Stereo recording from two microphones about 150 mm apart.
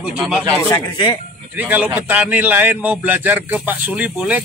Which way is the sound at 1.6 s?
10° right (ahead or behind).